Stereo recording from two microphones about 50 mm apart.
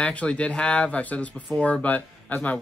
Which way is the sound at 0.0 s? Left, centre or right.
Left.